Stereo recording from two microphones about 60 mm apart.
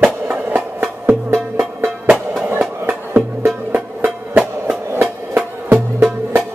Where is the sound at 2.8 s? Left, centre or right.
Right.